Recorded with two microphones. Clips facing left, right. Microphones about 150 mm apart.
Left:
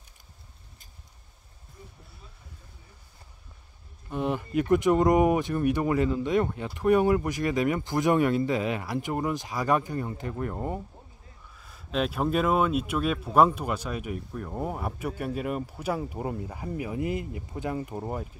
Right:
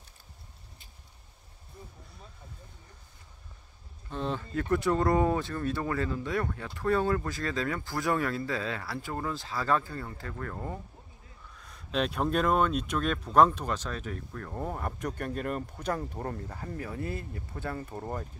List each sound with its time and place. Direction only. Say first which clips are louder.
4.1 s speech: left 5 dB; 15° left (ahead or behind)
11.5 s speech: left 2 dB; 5° left (ahead or behind)